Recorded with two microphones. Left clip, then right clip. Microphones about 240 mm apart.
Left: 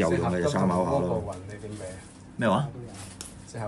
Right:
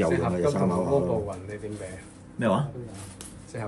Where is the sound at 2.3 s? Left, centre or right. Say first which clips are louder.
Even; centre.